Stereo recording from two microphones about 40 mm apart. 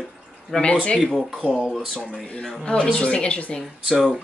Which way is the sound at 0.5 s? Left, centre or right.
Left.